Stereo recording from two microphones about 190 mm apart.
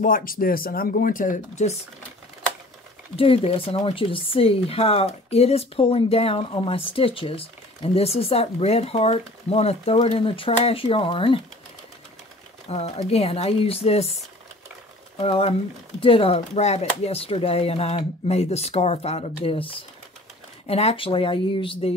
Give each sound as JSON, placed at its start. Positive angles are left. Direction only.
{"t": 0.0, "sound": "speech", "side_deg": 50}
{"t": 3.2, "sound": "speech", "side_deg": 30}
{"t": 12.6, "sound": "speech", "side_deg": 35}